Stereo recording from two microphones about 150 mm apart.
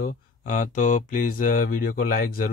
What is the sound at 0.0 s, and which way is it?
Speech, 60° left (ahead or behind).